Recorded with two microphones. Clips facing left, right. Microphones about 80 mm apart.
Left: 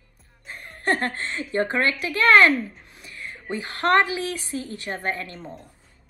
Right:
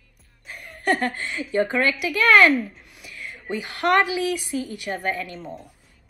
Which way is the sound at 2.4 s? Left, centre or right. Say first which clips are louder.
Right 1 dB; centre.